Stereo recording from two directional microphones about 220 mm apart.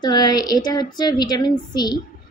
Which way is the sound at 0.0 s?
20° left (ahead or behind).